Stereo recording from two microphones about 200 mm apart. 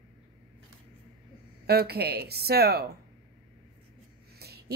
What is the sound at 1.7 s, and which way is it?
Speech, 50° right (ahead or behind).